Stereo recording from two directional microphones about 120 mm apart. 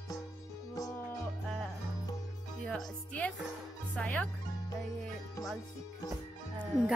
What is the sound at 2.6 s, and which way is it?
Speech, 10° left (ahead or behind).